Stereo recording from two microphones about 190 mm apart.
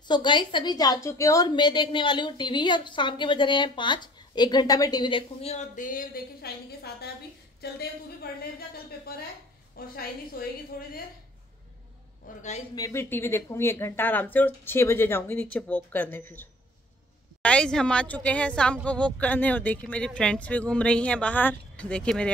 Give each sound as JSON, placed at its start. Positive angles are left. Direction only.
{"t": 0.1, "sound": "a woman's voice", "side_deg": 25}
{"t": 12.4, "sound": "a man's voice", "side_deg": 40}
{"t": 12.7, "sound": "speech", "side_deg": 15}